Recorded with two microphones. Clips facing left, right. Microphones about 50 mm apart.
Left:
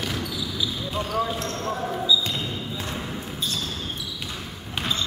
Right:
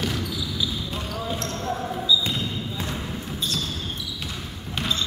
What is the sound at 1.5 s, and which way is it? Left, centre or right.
Basketball bounce, centre.